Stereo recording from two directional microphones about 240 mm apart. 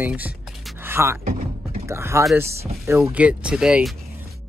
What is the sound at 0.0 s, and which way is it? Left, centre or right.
Speech, centre.